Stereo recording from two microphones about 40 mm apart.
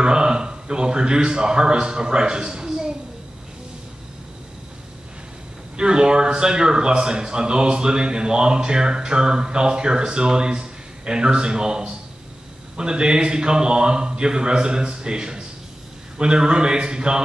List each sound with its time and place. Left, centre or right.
0.0 s a man's voice: right
5.8 s a man's voice: right